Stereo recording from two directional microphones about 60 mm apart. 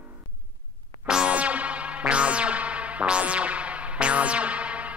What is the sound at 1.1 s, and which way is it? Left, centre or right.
Music, centre.